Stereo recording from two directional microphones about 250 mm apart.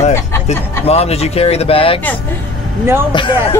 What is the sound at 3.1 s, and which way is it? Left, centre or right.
Speech, centre.